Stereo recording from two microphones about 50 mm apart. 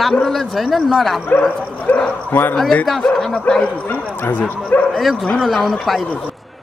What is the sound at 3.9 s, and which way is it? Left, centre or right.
Speech, left.